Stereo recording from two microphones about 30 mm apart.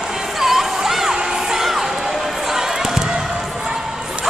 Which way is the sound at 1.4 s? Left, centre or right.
Centre.